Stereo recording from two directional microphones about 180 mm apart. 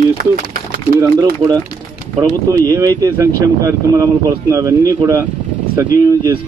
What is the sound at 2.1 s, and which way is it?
A man's voice, 20° right (ahead or behind).